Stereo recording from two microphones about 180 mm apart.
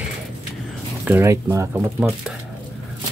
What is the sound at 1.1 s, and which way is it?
Speech, 10° right (ahead or behind).